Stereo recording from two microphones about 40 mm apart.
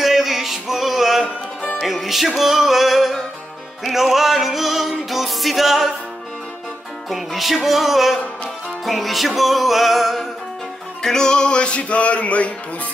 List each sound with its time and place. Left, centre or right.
0.0 s music: centre
7.1 s music: centre
11.0 s music: centre; by 12.5 s left